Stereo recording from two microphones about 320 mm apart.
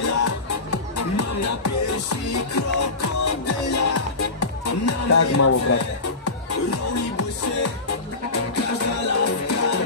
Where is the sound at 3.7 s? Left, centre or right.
Left.